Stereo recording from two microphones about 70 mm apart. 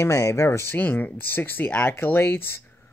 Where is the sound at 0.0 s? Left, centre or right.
Left.